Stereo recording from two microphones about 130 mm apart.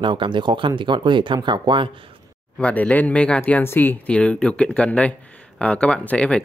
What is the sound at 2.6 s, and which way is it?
Speech, 10° left (ahead or behind).